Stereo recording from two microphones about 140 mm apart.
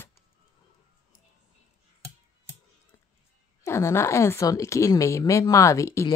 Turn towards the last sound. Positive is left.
turn(degrees=20)  # may be behind; listen again after turning